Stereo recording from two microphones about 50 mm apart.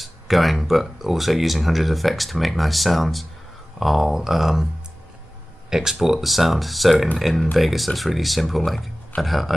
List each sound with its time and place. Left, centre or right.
0.0 s speech: centre
5.7 s speech: centre